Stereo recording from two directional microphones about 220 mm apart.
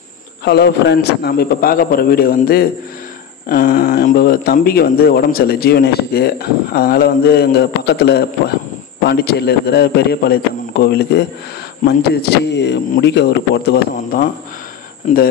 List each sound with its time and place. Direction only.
0.5 s speech: 50° left (ahead or behind)
15.1 s speech: 30° left (ahead or behind)